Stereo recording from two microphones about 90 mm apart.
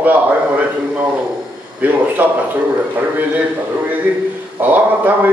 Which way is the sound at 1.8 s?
20° right (ahead or behind).